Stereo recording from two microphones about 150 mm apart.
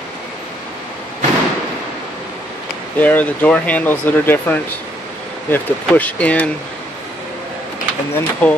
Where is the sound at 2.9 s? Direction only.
10° left (ahead or behind).